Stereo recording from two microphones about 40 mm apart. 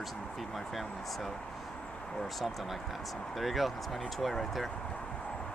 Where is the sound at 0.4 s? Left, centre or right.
Centre.